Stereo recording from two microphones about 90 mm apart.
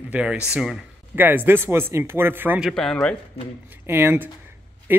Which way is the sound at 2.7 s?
10° left (ahead or behind).